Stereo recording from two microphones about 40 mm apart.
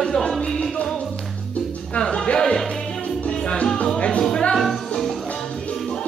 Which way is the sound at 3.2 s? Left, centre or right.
Left.